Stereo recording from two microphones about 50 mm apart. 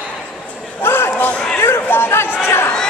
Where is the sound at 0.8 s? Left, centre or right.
Left.